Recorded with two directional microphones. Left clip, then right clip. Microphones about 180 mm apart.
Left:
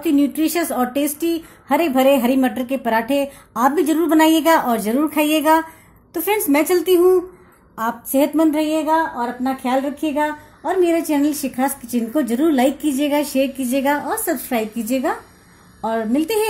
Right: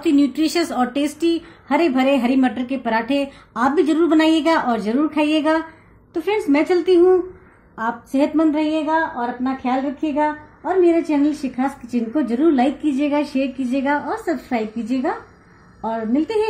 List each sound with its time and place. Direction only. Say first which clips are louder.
0.0 s a woman's voice: even; 50° left (ahead or behind)